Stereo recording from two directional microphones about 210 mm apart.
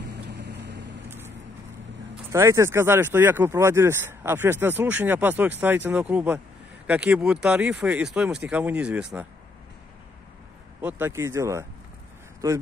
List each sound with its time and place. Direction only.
0.0 s vehicle: 55° right (ahead or behind)
2.3 s speech: 15° right (ahead or behind)
10.8 s speech: 10° right (ahead or behind)